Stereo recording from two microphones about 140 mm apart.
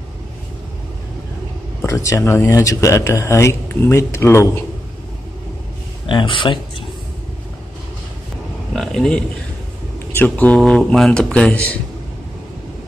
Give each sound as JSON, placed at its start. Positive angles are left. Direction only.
{"t": 1.8, "sound": "speech", "side_deg": 20}
{"t": 6.0, "sound": "speech", "side_deg": 35}
{"t": 8.7, "sound": "speech", "side_deg": 5}